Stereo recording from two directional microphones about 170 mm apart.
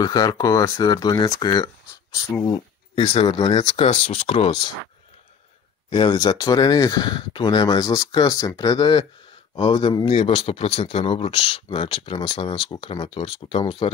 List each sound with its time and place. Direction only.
0.0 s speech: 20° left (ahead or behind)
5.9 s speech: 25° left (ahead or behind)